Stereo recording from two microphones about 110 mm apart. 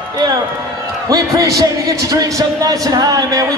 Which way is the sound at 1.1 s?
30° right (ahead or behind).